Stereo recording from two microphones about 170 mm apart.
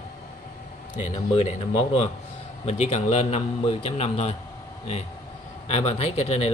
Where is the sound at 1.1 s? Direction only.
40° left (ahead or behind).